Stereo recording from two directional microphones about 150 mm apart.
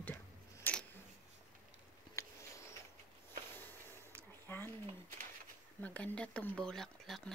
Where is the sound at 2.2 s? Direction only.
20° left (ahead or behind).